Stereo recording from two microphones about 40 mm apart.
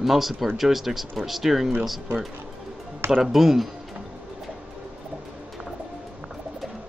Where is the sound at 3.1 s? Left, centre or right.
Centre.